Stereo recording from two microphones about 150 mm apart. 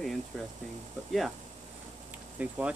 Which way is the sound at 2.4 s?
10° right (ahead or behind).